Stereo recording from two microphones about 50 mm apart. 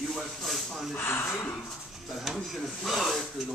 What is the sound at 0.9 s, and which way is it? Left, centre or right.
Speech, left.